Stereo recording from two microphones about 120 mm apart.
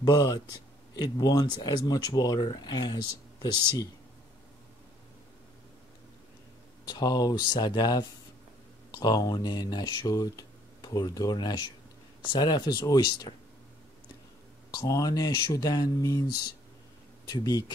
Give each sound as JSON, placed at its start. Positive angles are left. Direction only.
{"t": 0.0, "sound": "speech", "side_deg": 35}
{"t": 6.9, "sound": "speech", "side_deg": 35}
{"t": 14.7, "sound": "speech", "side_deg": 35}
{"t": 17.3, "sound": "speech", "side_deg": 35}